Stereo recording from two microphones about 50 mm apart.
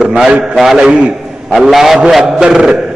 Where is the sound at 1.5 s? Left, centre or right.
Centre.